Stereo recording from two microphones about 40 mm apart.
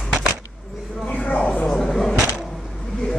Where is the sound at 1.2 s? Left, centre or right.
Left.